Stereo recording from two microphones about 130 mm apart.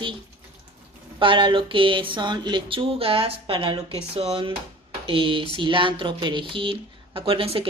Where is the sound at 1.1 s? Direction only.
40° right (ahead or behind).